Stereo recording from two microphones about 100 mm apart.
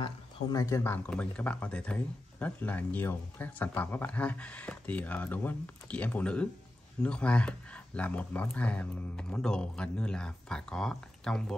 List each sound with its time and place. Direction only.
0.0 s speech: 40° left (ahead or behind)
0.8 s speech: 15° left (ahead or behind)